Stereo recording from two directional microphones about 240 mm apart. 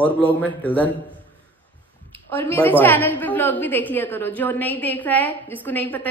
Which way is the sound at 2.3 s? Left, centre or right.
Centre.